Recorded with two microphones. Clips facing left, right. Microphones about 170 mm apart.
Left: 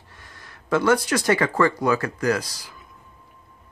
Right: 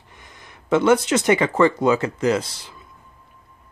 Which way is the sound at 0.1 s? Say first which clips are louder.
Right 2 dB; 20° right (ahead or behind).